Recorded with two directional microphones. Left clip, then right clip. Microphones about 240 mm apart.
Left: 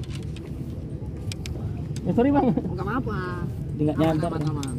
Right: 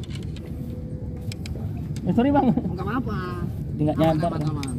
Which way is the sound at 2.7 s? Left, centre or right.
Right.